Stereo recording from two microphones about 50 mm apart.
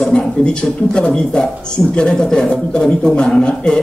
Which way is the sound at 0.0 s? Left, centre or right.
Centre.